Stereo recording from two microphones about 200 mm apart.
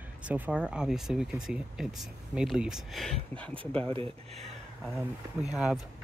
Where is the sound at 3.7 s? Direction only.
25° right (ahead or behind).